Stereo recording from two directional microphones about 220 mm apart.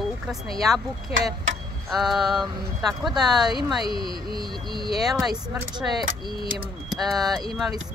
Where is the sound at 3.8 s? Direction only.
20° left (ahead or behind).